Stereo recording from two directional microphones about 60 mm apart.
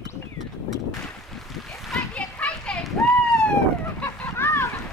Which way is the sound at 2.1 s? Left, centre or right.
Centre.